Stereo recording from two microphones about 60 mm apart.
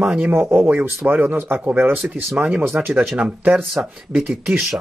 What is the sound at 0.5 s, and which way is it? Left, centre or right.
Speech, right.